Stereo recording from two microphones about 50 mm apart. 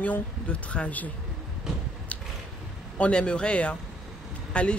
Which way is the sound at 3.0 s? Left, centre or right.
Left.